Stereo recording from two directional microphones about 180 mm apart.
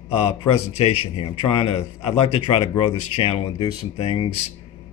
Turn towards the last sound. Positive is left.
turn(degrees=30)  # may be behind; listen again after turning